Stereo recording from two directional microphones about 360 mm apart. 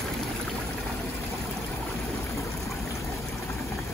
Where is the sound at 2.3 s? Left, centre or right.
Centre.